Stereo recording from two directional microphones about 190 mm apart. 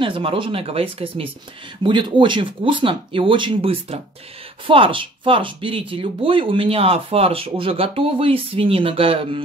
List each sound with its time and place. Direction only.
0.0 s speech: 30° right (ahead or behind)